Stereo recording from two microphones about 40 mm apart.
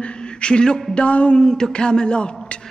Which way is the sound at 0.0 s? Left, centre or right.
Left.